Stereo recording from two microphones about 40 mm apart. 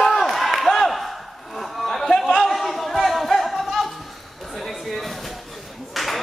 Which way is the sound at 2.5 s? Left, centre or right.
Centre.